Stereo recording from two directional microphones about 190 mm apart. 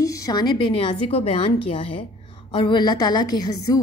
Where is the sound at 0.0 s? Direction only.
15° left (ahead or behind).